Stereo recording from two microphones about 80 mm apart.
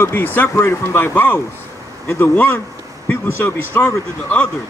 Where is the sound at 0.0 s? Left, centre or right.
Left.